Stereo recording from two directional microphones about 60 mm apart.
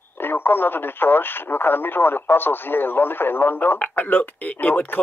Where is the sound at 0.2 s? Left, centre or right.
Left.